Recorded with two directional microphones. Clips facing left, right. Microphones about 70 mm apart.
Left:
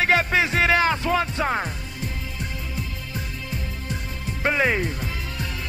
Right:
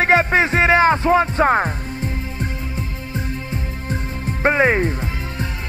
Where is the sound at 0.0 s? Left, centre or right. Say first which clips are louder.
Right 5 dB; right.